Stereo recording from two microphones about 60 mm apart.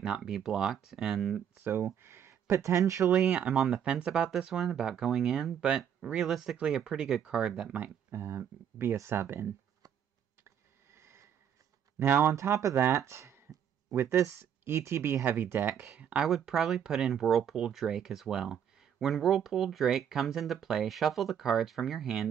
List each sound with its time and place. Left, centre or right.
0.0 s speech: centre
1.6 s speech: right
3.1 s speech: centre
8.1 s speech: right
10.9 s a sound: right
12.0 s speech: right
12.4 s speech: right
12.7 s speech: right
16.0 s speech: right
16.3 s speech: centre